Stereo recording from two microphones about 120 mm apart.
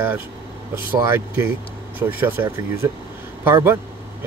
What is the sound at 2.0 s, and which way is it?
Speech, 15° right (ahead or behind).